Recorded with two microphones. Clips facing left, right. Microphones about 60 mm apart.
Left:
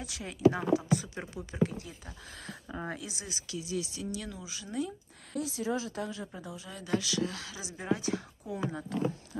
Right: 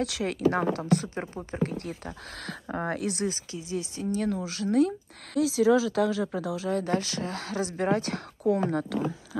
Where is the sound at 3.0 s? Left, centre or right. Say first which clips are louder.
Right 14 dB; right.